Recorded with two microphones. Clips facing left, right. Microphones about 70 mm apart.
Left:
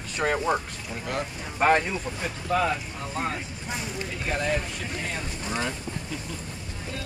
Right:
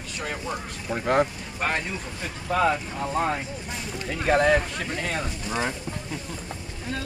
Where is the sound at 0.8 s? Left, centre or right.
Right.